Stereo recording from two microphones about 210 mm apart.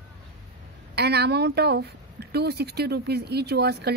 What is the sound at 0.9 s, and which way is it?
Speech, 50° right (ahead or behind).